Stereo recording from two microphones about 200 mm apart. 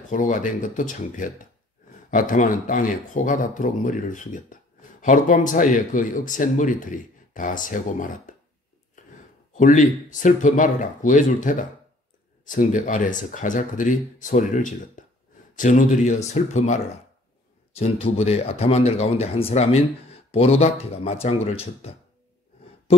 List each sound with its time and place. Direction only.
0.1 s speech: 40° left (ahead or behind)
9.6 s speech: 40° left (ahead or behind)